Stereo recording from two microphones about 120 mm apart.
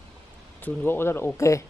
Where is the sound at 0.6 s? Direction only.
15° left (ahead or behind).